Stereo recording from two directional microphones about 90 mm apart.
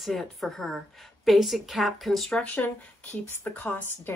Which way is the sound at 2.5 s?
20° left (ahead or behind).